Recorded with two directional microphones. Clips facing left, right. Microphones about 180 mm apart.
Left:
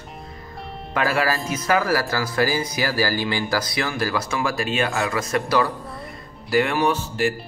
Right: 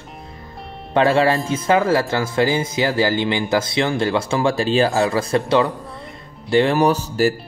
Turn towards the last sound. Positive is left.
turn(degrees=-40)  # may be behind; listen again after turning